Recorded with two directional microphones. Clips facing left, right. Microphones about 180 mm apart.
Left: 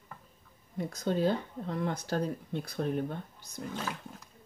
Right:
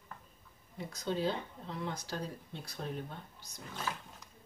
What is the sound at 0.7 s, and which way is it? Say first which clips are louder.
Speech: left 5 dB; 50° left (ahead or behind).